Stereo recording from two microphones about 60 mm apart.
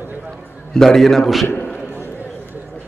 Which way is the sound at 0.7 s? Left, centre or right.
Centre.